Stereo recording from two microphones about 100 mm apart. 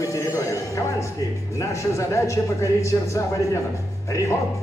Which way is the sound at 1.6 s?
30° left (ahead or behind).